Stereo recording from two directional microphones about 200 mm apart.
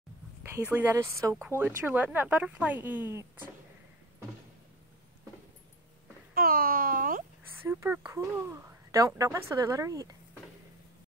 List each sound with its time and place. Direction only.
0.4 s speech: 10° right (ahead or behind)
6.3 s a sound: 45° right (ahead or behind)
7.6 s speech: 10° right (ahead or behind)